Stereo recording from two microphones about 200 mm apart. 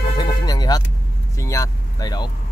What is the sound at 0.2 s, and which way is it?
Music, 20° left (ahead or behind).